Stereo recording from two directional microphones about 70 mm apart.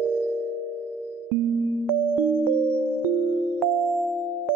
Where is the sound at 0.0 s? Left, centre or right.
Centre.